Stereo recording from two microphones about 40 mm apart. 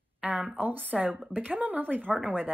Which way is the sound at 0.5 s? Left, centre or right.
Right.